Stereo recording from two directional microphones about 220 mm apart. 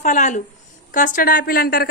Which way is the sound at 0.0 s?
35° left (ahead or behind).